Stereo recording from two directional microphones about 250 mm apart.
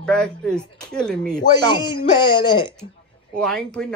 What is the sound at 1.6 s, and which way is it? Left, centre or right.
Speech, centre.